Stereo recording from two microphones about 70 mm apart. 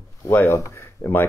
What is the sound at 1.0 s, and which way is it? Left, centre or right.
Speech, left.